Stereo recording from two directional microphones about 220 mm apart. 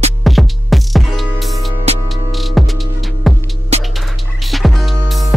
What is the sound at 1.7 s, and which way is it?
Music, 30° right (ahead or behind).